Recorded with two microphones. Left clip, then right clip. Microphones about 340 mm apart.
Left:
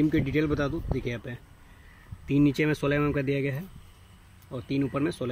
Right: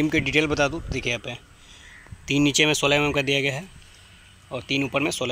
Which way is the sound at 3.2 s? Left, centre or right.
Right.